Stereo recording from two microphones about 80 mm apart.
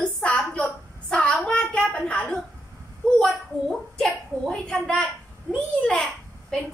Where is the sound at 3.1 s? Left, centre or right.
Centre.